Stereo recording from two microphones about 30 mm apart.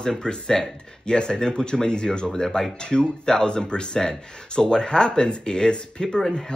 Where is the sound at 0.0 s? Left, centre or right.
Left.